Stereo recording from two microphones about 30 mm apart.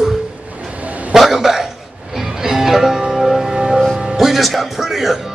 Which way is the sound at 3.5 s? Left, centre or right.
Centre.